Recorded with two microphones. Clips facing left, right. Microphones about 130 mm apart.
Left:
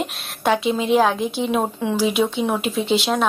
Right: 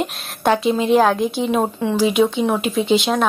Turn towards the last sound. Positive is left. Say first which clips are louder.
# right 3 dB
turn(degrees=0)  # may be behind; listen again after turning